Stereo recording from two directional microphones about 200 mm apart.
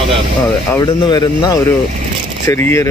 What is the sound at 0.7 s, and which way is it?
A man's voice, 20° left (ahead or behind).